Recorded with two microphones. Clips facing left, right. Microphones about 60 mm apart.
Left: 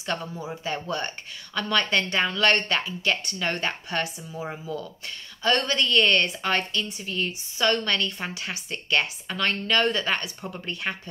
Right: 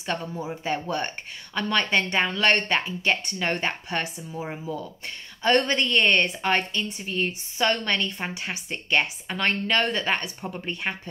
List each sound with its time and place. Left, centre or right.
0.8 s a woman's voice: centre